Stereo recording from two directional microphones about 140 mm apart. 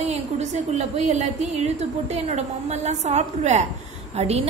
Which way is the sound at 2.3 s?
55° right (ahead or behind).